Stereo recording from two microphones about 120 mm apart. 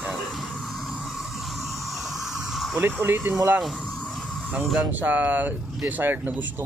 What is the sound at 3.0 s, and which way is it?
Speech, 15° right (ahead or behind).